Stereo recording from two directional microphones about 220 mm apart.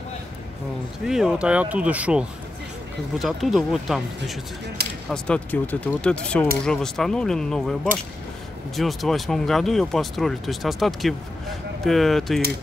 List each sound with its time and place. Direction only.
1.0 s speech: centre (ahead or behind)
4.8 s a sound: 45° right (ahead or behind)
5.1 s speech: 5° left (ahead or behind)